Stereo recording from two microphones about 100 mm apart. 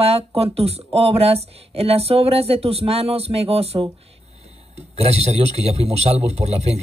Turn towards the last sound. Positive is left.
turn(degrees=-90)